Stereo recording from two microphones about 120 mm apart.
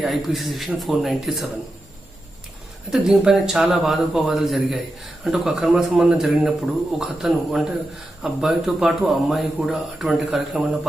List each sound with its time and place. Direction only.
0.0 s a man's voice: centre (ahead or behind)
2.9 s a man's voice: 5° right (ahead or behind)